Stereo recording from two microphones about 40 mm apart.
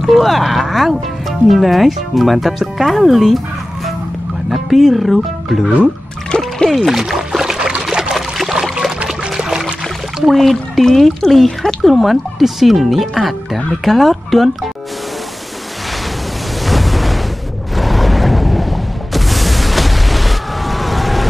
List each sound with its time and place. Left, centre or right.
0.0 s speech: centre
6.3 s music: left
6.7 s a sound: centre
9.4 s pour: centre
10.2 s speech: centre
16.6 s a sound: centre